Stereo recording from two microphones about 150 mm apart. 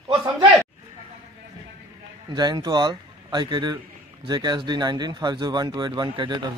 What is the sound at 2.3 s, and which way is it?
Speech, 30° right (ahead or behind).